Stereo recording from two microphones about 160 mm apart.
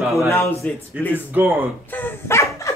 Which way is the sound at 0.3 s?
20° left (ahead or behind).